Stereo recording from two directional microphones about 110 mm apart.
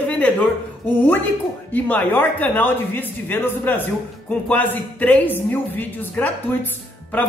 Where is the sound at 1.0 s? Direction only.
15° left (ahead or behind).